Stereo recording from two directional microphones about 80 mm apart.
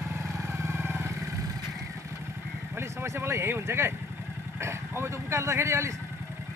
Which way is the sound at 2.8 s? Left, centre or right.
Right.